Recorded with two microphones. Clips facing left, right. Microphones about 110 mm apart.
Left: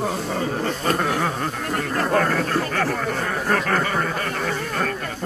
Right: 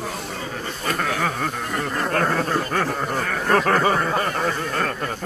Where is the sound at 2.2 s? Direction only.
20° right (ahead or behind).